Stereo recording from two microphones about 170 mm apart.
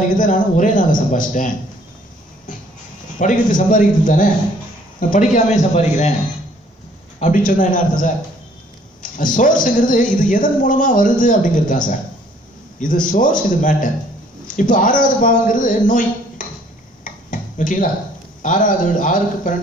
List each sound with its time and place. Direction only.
0.2 s speech: 50° left (ahead or behind)
3.2 s speech: 50° left (ahead or behind)
7.2 s speech: 50° left (ahead or behind)
9.2 s speech: 50° left (ahead or behind)
17.0 s a sound: 50° left (ahead or behind)
18.4 s speech: 50° left (ahead or behind)